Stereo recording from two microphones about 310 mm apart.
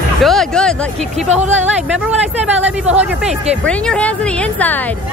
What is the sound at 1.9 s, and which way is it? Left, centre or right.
Speech, centre.